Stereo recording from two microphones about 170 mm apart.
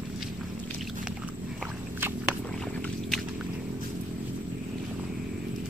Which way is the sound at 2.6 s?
Centre (ahead or behind).